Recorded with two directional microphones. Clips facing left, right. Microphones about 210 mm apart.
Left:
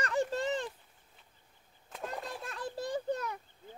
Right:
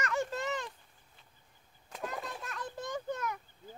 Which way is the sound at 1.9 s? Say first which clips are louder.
Even; centre (ahead or behind).